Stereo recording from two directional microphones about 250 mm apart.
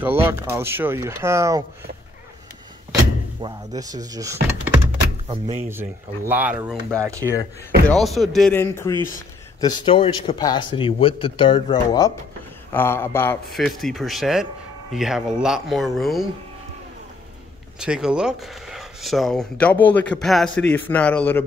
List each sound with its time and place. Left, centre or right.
0.3 s speech: centre
2.9 s speech: centre
5.3 s speech: right
5.7 s speech: centre
7.9 s speech: centre
17.7 s speech: centre